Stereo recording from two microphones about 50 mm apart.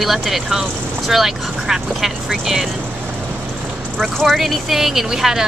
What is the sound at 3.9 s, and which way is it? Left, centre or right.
Speech, centre.